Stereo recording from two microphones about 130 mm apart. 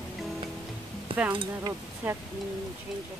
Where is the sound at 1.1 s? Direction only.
45° right (ahead or behind).